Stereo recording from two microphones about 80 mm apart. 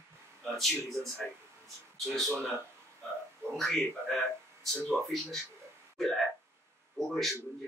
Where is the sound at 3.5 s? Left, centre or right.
Centre.